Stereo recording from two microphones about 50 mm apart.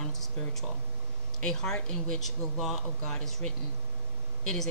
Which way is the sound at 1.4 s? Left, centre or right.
Centre.